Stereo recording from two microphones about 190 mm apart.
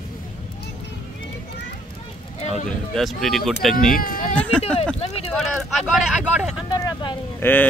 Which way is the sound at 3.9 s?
50° left (ahead or behind).